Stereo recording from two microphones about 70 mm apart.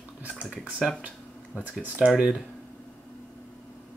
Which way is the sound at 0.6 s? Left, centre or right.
Centre.